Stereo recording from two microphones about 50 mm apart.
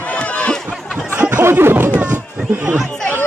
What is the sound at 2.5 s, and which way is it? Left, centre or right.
Speech, right.